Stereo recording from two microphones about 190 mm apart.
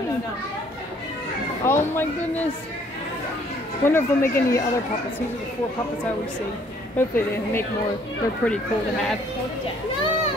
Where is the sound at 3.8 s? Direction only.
10° left (ahead or behind).